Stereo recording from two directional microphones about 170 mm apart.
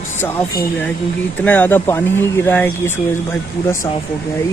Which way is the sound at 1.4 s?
10° left (ahead or behind).